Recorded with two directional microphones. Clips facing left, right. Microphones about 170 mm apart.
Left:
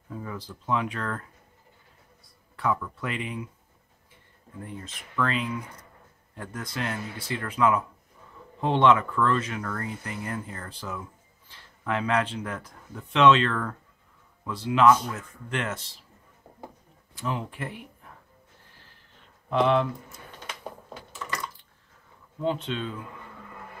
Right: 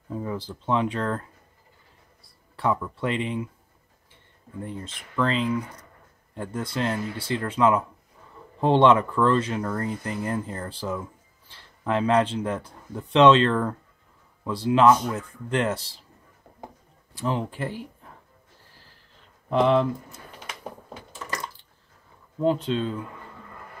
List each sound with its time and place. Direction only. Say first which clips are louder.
0.1 s speech: right 6 dB; 30° right (ahead or behind)
2.5 s speech: right 2 dB; 30° right (ahead or behind)
4.6 s speech: right 4 dB; 30° right (ahead or behind)
17.1 s speech: right 4 dB; 30° right (ahead or behind)
22.4 s speech: right 5 dB; 40° right (ahead or behind)